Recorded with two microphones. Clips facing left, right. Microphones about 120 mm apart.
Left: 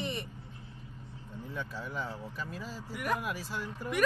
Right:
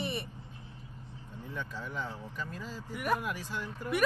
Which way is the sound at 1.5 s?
15° left (ahead or behind).